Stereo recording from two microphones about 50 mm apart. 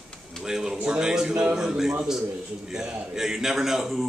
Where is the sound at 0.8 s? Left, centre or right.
Centre.